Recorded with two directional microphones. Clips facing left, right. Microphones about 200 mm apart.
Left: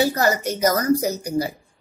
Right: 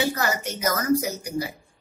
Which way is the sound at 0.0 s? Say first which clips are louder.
Left 6 dB; 40° left (ahead or behind).